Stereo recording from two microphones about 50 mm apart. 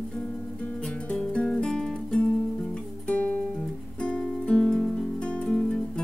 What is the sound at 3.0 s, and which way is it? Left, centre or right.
Music, left.